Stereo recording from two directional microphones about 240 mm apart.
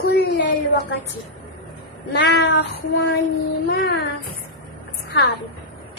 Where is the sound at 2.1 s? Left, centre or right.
Left.